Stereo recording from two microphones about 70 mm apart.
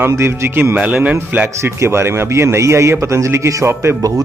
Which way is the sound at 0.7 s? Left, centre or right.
Centre.